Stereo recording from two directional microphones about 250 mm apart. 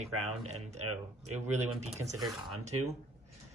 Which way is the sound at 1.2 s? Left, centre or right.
Right.